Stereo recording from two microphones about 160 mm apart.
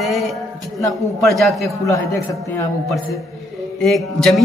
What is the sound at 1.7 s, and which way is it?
Speech, 20° left (ahead or behind).